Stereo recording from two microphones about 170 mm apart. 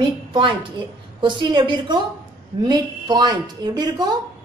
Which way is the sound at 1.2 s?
25° right (ahead or behind).